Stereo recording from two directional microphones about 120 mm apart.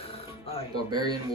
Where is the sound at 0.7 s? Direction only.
35° right (ahead or behind).